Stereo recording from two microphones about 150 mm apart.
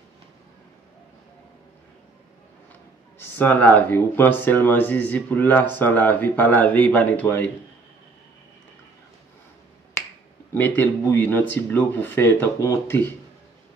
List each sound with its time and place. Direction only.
3.3 s speech: 10° left (ahead or behind)
10.5 s speech: 15° left (ahead or behind)